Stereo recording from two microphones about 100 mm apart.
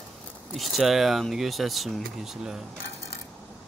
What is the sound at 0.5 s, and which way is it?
Speech, centre (ahead or behind).